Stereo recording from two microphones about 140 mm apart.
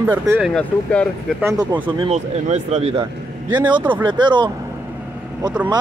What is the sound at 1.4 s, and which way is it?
Speech, 20° right (ahead or behind).